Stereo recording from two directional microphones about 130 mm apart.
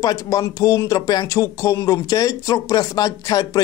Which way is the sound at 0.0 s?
25° left (ahead or behind).